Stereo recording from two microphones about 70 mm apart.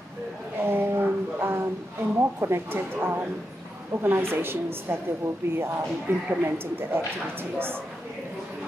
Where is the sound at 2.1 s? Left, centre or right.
Right.